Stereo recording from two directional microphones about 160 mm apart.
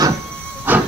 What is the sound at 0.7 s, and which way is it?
Hiss, 10° right (ahead or behind).